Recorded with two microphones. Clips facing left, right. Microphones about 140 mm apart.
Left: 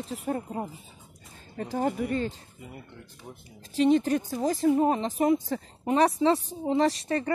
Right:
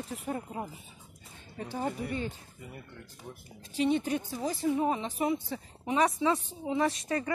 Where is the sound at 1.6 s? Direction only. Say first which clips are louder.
Left 6 dB; 45° left (ahead or behind).